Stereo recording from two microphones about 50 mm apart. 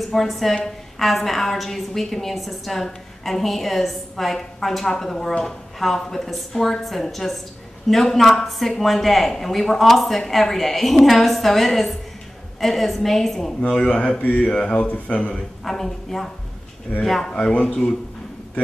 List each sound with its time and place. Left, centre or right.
0.1 s a woman's voice: centre
13.6 s speech: centre
14.5 s speech: centre
15.6 s a woman's voice: centre
17.3 s speech: left